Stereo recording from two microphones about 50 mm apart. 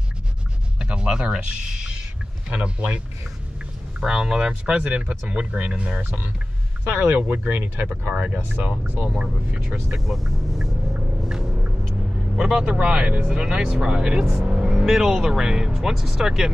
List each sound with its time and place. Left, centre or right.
0.7 s music: centre
2.5 s speech: right
4.0 s speech: centre
6.9 s speech: right
7.9 s speech: right
8.4 s speech: right
9.2 s speech: centre
9.8 s speech: centre
11.2 s a sound: centre
12.5 s speech: right